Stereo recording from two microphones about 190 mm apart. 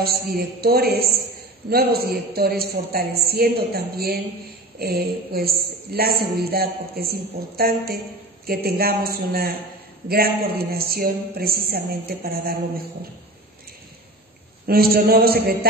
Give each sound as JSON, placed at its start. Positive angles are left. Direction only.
{"t": 0.0, "sound": "a woman's voice", "side_deg": -55}
{"t": 14.7, "sound": "a woman's voice", "side_deg": -55}